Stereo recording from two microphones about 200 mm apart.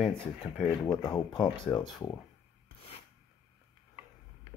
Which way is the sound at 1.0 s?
20° left (ahead or behind).